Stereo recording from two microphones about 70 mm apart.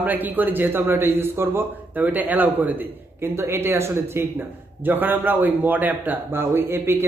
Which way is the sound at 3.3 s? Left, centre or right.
Right.